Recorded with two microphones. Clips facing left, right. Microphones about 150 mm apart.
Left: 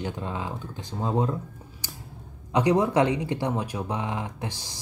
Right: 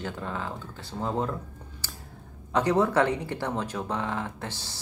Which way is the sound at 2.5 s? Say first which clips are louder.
Left 2 dB; 15° left (ahead or behind).